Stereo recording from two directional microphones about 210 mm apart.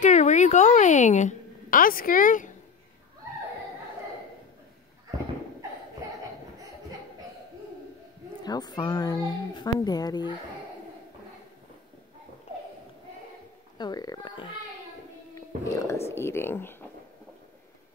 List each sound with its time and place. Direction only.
0.0 s a woman's voice: 35° left (ahead or behind)
8.4 s a woman's voice: 20° left (ahead or behind)
13.7 s a woman's voice: 20° left (ahead or behind)